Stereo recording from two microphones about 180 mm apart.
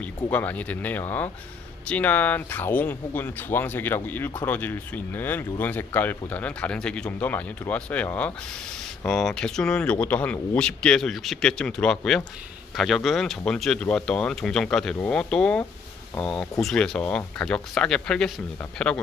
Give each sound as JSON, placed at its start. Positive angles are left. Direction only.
{"t": 0.0, "sound": "speech", "side_deg": 10}